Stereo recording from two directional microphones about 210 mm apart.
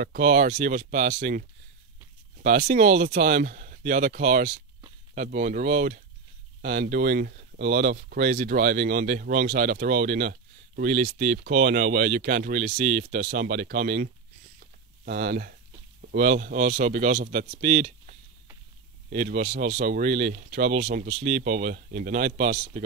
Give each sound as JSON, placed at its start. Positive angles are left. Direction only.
{"t": 0.0, "sound": "speech", "side_deg": -40}
{"t": 2.4, "sound": "speech", "side_deg": -40}
{"t": 15.0, "sound": "speech", "side_deg": -45}